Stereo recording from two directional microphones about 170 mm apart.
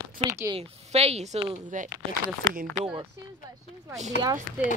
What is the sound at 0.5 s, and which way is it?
Speech, 40° right (ahead or behind).